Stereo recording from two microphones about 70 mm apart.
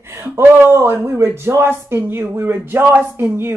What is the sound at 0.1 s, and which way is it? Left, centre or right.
Speech, right.